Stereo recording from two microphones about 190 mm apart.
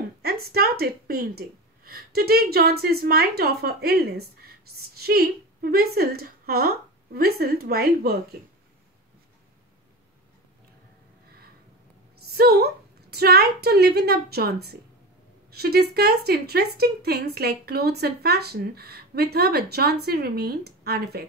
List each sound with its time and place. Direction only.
0.2 s a woman's voice: 55° right (ahead or behind)
12.2 s a woman's voice: 55° right (ahead or behind)